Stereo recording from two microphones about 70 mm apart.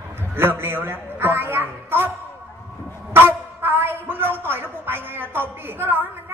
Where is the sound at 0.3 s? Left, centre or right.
Right.